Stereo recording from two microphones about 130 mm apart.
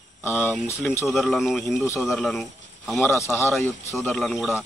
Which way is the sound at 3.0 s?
20° left (ahead or behind).